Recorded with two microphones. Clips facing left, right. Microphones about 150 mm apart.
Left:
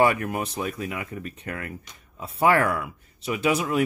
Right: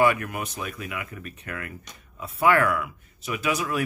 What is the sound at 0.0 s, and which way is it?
Speech, 30° left (ahead or behind).